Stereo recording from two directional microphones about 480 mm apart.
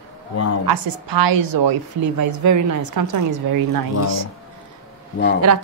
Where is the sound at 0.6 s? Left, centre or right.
Right.